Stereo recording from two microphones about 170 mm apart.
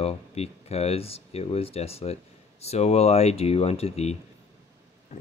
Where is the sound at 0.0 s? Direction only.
35° left (ahead or behind).